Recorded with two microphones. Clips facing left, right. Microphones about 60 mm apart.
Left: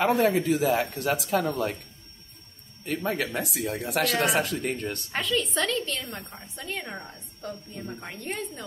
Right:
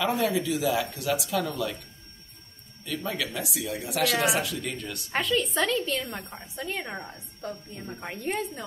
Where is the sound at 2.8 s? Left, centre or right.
Left.